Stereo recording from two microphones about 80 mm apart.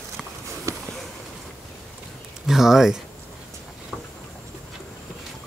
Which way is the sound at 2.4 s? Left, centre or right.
Centre.